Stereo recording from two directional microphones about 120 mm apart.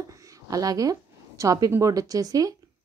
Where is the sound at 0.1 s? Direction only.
25° right (ahead or behind).